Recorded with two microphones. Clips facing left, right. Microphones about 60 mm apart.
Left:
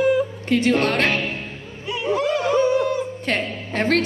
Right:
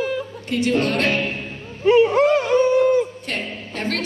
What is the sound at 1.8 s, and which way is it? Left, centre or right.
Music, right.